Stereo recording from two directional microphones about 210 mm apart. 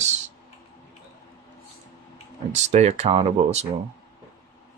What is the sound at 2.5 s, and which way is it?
Speech, 30° right (ahead or behind).